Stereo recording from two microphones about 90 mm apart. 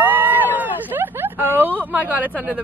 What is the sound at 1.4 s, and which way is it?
Speech, 25° right (ahead or behind).